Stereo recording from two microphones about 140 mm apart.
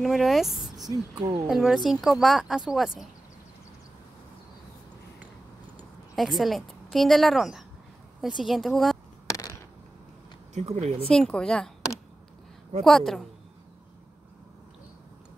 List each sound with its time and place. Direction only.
0.0 s speech: centre (ahead or behind)
0.8 s speech: 25° right (ahead or behind)
1.5 s speech: 5° right (ahead or behind)
6.1 s speech: centre (ahead or behind)
9.3 s a sound: 25° left (ahead or behind)
10.5 s speech: 50° right (ahead or behind)
11.1 s speech: 5° left (ahead or behind)
12.8 s speech: centre (ahead or behind)